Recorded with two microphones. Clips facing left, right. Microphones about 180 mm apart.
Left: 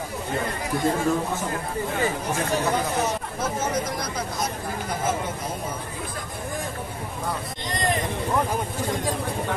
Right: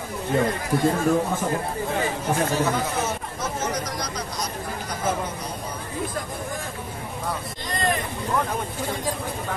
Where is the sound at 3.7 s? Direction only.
25° left (ahead or behind).